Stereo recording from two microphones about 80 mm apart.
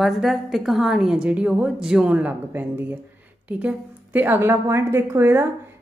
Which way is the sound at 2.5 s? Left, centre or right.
Right.